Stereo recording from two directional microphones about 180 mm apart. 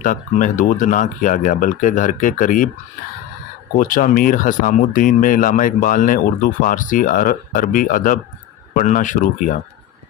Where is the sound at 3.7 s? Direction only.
50° left (ahead or behind).